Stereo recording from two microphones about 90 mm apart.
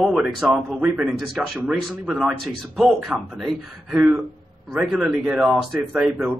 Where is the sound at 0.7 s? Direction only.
15° right (ahead or behind).